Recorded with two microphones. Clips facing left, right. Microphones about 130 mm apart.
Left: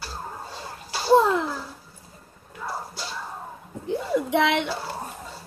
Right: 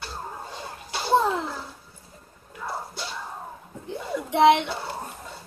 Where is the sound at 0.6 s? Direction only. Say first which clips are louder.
Even; 5° left (ahead or behind).